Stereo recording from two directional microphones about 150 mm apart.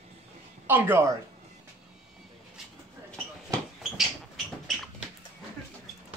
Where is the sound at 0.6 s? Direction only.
15° right (ahead or behind).